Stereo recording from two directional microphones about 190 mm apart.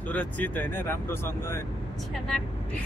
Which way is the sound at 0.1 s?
10° left (ahead or behind).